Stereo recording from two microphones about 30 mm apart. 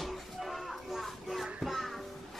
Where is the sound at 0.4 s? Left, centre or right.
Centre.